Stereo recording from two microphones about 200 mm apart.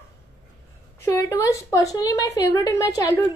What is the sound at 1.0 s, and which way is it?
A woman's voice, 15° left (ahead or behind).